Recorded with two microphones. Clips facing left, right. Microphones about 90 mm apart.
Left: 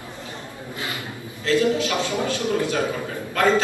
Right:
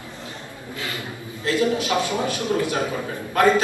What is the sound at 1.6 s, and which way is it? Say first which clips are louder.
A man's voice: even; 20° right (ahead or behind).